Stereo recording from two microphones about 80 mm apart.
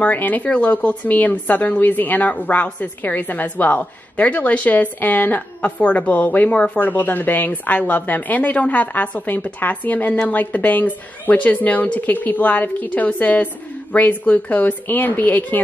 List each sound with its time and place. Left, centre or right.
0.0 s a woman's voice: left